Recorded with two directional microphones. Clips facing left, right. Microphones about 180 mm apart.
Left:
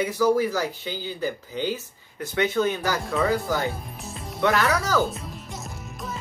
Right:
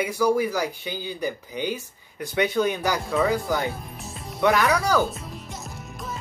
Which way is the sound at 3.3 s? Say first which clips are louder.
Even; 15° right (ahead or behind).